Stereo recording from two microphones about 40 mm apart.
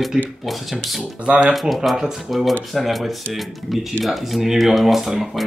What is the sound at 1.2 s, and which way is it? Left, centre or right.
Speech, right.